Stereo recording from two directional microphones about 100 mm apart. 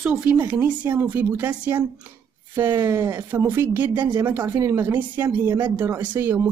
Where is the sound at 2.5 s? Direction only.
25° right (ahead or behind).